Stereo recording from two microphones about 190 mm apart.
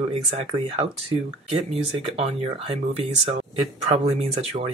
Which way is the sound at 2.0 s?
30° right (ahead or behind).